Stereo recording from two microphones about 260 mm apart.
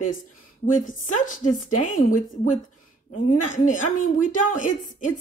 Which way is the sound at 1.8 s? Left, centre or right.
Left.